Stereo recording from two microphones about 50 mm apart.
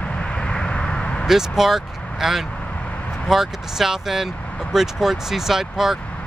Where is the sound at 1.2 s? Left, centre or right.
Centre.